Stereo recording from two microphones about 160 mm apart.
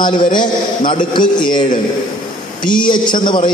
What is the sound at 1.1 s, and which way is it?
A man's voice, 30° left (ahead or behind).